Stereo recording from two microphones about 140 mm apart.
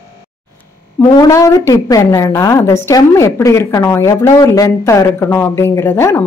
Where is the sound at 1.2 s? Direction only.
20° left (ahead or behind).